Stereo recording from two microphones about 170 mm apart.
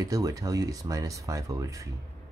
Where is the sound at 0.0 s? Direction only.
20° right (ahead or behind).